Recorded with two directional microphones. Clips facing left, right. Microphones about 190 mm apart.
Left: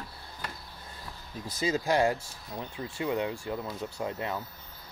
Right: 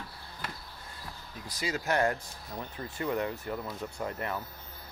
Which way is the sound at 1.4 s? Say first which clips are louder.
Left 4 dB; 25° left (ahead or behind).